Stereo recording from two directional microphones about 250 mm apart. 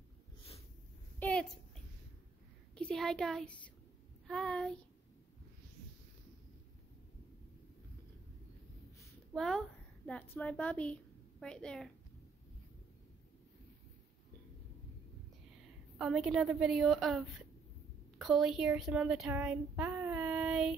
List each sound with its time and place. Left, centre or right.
1.2 s a sound: centre
2.7 s speech: centre
9.0 s a woman's voice: centre
16.0 s speech: centre